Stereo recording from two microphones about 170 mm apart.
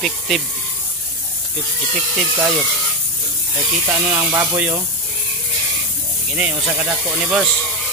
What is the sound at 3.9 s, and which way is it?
Speech, 20° right (ahead or behind).